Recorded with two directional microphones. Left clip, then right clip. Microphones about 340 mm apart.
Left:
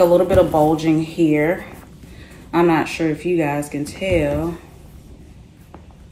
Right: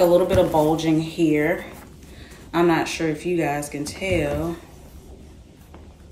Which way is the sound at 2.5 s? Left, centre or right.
Centre.